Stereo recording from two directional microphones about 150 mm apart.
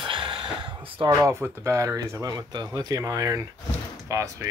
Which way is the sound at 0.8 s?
35° right (ahead or behind).